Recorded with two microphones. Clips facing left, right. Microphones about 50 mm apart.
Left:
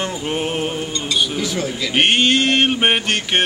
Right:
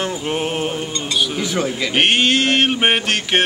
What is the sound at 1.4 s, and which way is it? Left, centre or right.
Speech, right.